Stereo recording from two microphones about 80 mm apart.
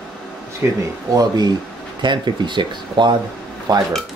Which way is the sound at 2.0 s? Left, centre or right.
Right.